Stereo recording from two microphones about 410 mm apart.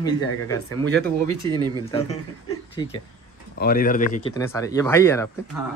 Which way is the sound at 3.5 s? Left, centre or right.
Left.